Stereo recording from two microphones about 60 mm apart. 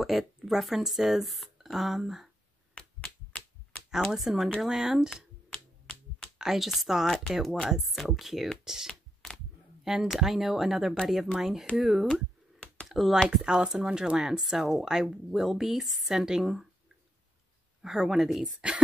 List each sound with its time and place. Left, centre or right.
0.0 s speech: centre
2.7 s finger snapping: centre
4.1 s speech: centre
5.5 s finger snapping: centre
6.3 s speech: centre
13.3 s speech: centre
17.8 s speech: centre